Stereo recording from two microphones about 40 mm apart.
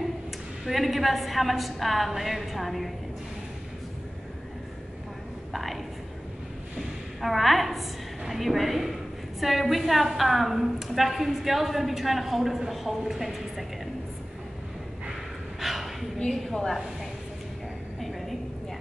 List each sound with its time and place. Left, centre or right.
0.7 s a woman's voice: centre
5.5 s a woman's voice: centre
7.2 s a woman's voice: centre
15.6 s gasp: centre
16.3 s a woman's voice: centre